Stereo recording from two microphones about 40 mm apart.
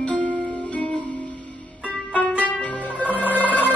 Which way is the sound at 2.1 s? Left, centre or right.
Left.